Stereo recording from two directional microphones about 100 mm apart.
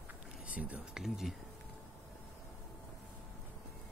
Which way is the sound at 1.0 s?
5° right (ahead or behind).